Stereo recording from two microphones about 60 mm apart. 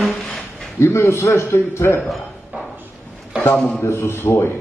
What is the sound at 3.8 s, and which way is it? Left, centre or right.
Speech, left.